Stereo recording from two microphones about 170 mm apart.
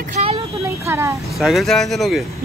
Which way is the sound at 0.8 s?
15° right (ahead or behind).